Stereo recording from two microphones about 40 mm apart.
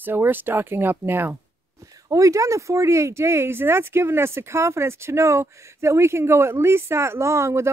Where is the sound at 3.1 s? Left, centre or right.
Right.